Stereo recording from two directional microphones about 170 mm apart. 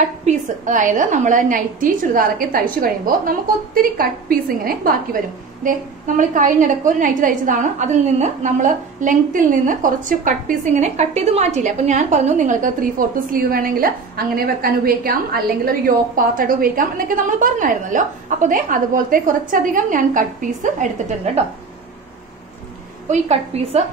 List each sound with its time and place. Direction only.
0.2 s a woman's voice: 45° right (ahead or behind)
23.0 s a woman's voice: 40° right (ahead or behind)